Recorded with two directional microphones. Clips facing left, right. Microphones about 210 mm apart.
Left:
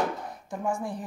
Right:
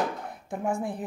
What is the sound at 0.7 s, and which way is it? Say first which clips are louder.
Speech: right 2 dB; 60° right (ahead or behind).